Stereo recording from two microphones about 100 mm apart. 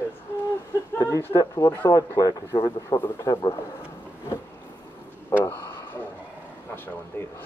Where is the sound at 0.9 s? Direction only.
30° left (ahead or behind).